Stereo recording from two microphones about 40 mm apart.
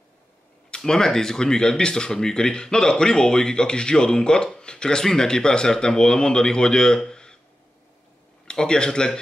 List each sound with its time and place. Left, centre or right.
0.7 s speech: centre
8.5 s speech: left